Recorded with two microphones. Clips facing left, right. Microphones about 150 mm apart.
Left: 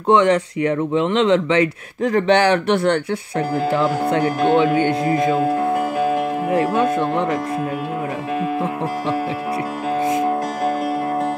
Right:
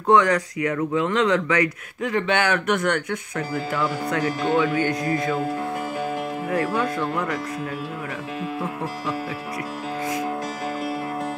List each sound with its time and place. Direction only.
0.0 s speech: 25° left (ahead or behind)
2.0 s speech: 35° left (ahead or behind)
4.7 s speech: 25° left (ahead or behind)
5.4 s music: 60° left (ahead or behind)
6.5 s speech: 20° left (ahead or behind)